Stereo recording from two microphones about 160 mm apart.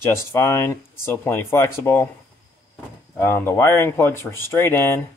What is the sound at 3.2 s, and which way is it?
Speech, 15° left (ahead or behind).